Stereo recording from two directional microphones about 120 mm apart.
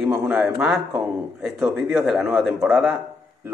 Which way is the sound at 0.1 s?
15° right (ahead or behind).